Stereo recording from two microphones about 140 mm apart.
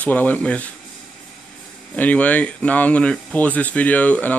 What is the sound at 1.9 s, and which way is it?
Speech, 10° left (ahead or behind).